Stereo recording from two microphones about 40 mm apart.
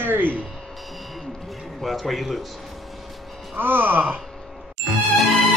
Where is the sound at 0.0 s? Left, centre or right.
Right.